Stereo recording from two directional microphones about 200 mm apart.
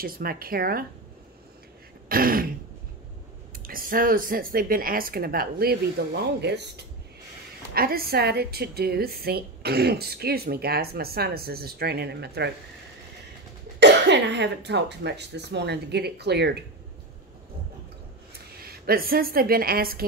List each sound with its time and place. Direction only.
0.0 s a woman's voice: 45° right (ahead or behind)
2.0 s throat clearing: 45° right (ahead or behind)
3.6 s a woman's voice: 45° right (ahead or behind)
13.7 s speech: 60° right (ahead or behind)
18.6 s a woman's voice: 50° right (ahead or behind)